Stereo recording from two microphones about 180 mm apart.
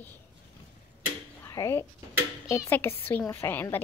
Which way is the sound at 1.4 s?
15° left (ahead or behind).